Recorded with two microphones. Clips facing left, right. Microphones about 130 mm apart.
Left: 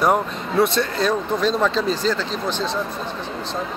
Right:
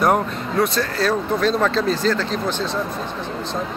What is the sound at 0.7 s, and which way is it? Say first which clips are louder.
Speech: even; 20° left (ahead or behind).